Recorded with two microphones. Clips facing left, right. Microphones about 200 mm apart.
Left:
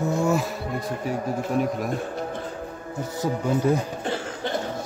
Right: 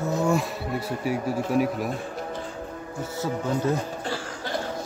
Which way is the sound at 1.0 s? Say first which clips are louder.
Right 2 dB; 10° right (ahead or behind).